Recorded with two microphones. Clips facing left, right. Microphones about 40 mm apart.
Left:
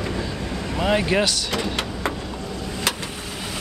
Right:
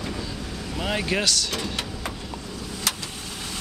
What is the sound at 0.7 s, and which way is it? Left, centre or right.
Speech, centre.